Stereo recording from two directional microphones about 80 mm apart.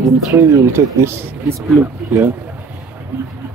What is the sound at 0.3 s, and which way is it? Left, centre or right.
Speech, right.